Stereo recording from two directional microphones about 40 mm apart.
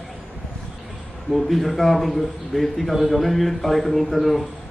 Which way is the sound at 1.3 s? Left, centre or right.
Centre.